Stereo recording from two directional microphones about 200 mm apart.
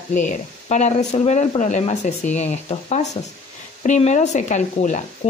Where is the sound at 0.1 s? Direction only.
40° left (ahead or behind).